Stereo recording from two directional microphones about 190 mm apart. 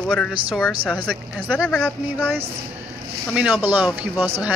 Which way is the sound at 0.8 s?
5° left (ahead or behind).